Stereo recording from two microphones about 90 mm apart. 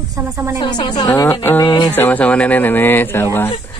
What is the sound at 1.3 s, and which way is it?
Speech, 25° left (ahead or behind).